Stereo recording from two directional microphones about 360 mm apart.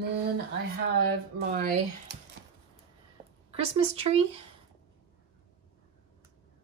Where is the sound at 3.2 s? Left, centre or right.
Centre.